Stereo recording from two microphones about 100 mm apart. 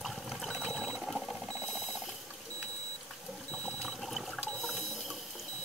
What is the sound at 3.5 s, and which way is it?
Water, 10° left (ahead or behind).